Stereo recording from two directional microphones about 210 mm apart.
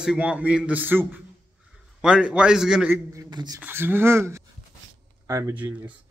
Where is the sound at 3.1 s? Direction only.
20° right (ahead or behind).